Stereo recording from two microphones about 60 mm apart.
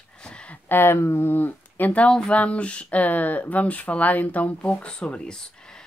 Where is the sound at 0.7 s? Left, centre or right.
Left; by 5.4 s centre.